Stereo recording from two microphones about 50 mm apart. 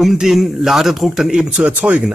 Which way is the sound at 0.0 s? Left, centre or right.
Centre.